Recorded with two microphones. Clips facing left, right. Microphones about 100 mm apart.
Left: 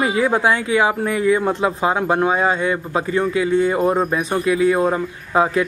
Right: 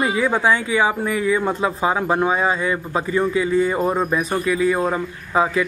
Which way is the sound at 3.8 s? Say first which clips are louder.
Left 2 dB; 10° left (ahead or behind).